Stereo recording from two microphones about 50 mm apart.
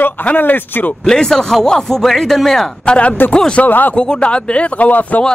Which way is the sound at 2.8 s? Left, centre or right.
Left.